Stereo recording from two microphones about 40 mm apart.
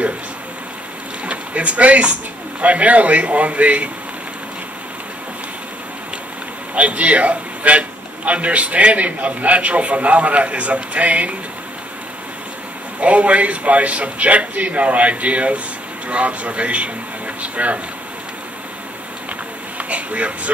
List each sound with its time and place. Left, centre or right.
1.2 s a man's voice: right
6.7 s a man's voice: right
13.0 s a man's voice: right
19.8 s speech: right